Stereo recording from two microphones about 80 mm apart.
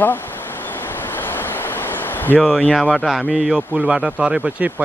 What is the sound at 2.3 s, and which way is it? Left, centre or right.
Speech, centre.